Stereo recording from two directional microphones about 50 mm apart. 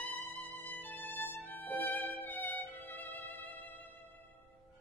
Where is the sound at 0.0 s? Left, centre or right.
Left.